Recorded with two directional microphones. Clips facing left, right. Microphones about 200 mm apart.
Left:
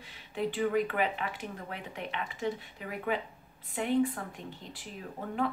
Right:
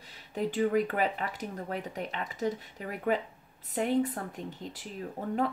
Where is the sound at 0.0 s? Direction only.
40° right (ahead or behind).